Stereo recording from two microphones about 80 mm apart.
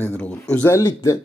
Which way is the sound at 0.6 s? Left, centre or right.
Left.